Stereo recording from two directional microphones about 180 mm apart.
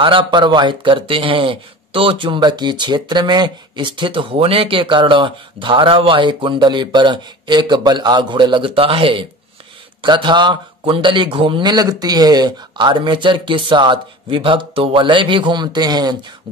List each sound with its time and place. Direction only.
0.0 s speech: 30° right (ahead or behind)